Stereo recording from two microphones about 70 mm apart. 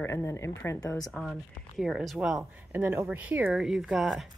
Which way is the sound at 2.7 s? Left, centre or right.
Right.